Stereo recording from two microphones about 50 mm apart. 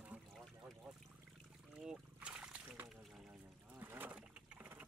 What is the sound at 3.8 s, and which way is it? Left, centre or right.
Boat, right.